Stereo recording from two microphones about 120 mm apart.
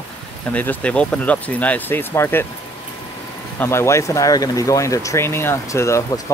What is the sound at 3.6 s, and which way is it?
Speech, 20° left (ahead or behind).